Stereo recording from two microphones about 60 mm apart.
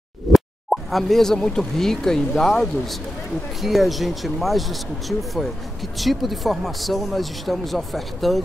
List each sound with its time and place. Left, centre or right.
0.3 s speech: centre